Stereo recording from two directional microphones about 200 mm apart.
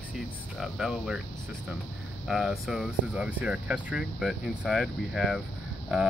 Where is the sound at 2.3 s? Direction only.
Centre (ahead or behind).